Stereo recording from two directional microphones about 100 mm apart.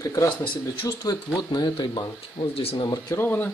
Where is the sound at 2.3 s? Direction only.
75° left (ahead or behind).